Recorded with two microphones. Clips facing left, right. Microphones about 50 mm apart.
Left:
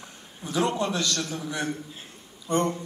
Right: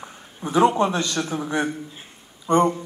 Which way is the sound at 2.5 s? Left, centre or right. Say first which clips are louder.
Right 7 dB; centre.